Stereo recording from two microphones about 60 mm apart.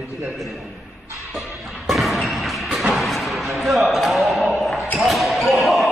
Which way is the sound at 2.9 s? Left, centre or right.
Centre.